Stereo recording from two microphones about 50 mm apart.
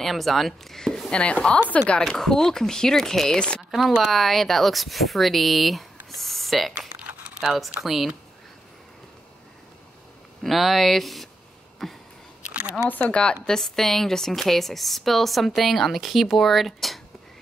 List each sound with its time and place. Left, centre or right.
0.0 s speech: centre
1.2 s a woman's voice: left
2.0 s speech: centre
3.3 s a woman's voice: centre
3.7 s speech: centre
7.8 s speech: centre
10.4 s speech: centre
11.8 s a sound: centre
12.4 s a sound: right
13.1 s a woman's voice: left
13.6 s speech: centre